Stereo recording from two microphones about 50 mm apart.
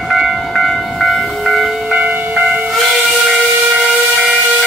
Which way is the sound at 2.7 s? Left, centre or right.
Centre.